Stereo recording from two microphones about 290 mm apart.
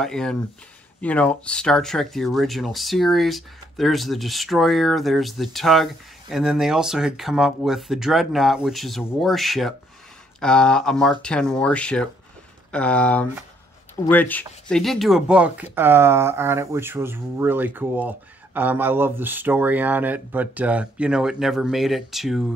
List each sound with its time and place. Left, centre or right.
0.0 s speech: centre